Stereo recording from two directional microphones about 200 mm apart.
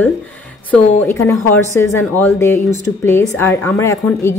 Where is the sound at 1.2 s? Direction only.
10° left (ahead or behind).